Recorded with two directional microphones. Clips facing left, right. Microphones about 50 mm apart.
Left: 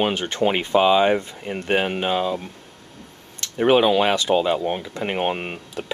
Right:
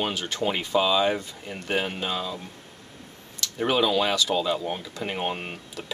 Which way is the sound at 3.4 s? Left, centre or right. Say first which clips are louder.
Left 7 dB; left.